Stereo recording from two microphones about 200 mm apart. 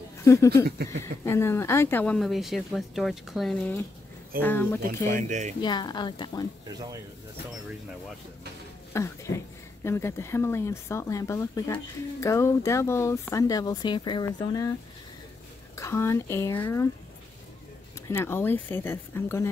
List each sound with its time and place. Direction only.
0.2 s speech: 15° left (ahead or behind)
5.6 s a woman's voice: 20° left (ahead or behind)
8.9 s speech: 15° left (ahead or behind)
15.7 s speech: 15° left (ahead or behind)
18.0 s speech: 15° left (ahead or behind)